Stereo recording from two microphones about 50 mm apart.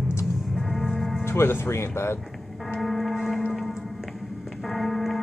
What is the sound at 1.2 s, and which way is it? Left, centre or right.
Speech, left.